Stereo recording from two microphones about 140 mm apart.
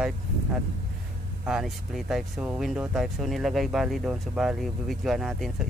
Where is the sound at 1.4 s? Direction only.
Centre (ahead or behind).